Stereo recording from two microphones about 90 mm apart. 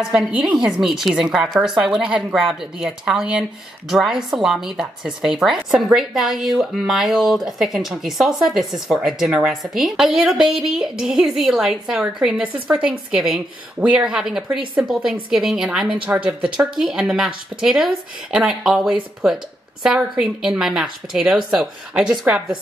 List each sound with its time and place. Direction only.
0.7 s a woman's voice: 5° right (ahead or behind)